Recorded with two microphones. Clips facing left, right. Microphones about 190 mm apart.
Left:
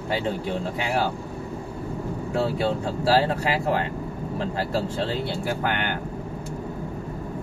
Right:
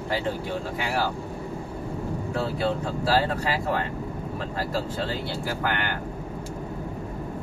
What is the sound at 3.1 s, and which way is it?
Speech, 30° left (ahead or behind).